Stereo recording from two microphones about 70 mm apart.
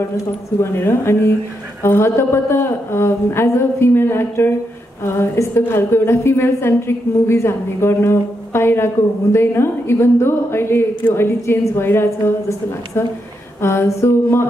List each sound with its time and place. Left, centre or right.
0.6 s a woman's voice: left